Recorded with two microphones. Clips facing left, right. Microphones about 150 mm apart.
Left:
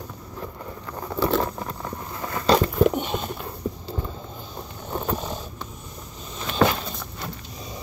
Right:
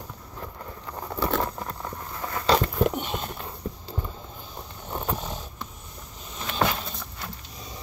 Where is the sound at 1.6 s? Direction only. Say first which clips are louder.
Left 2 dB; 5° left (ahead or behind).